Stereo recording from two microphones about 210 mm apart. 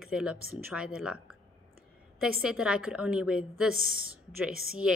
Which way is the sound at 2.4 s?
5° right (ahead or behind).